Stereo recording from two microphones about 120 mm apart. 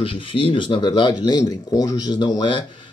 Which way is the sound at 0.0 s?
45° left (ahead or behind).